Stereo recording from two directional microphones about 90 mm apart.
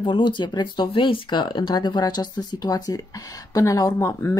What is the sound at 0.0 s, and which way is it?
Speech, 60° left (ahead or behind).